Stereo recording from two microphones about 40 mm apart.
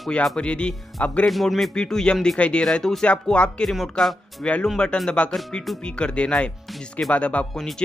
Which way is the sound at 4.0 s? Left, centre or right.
Centre.